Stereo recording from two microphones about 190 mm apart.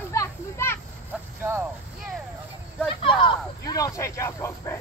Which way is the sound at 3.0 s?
25° left (ahead or behind).